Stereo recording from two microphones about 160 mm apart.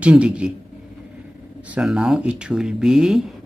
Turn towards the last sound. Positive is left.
turn(degrees=-5)  # may be behind; listen again after turning